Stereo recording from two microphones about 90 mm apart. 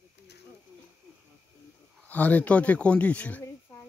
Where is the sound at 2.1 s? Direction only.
15° left (ahead or behind).